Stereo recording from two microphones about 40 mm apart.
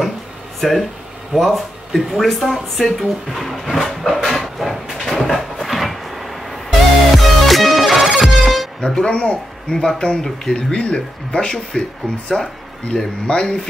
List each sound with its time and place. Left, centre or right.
0.6 s speech: centre
3.7 s a sound: centre
7.2 s music: centre
8.8 s speech: centre
9.1 s speech: left
9.8 s speech: centre
10.5 s speech: left